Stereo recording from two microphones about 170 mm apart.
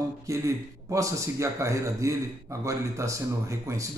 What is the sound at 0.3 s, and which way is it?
Speech, 20° right (ahead or behind).